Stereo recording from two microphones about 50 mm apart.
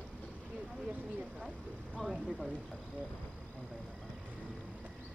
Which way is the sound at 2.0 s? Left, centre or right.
Centre.